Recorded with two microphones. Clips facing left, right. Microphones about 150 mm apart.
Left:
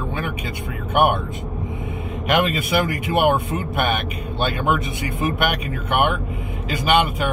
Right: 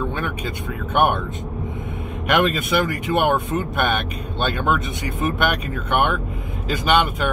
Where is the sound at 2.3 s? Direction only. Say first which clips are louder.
Right 1 dB; 5° left (ahead or behind).